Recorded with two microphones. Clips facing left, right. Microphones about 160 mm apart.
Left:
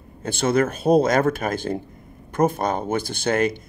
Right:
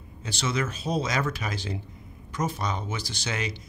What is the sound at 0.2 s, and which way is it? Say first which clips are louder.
Speech: left 9 dB; 55° left (ahead or behind).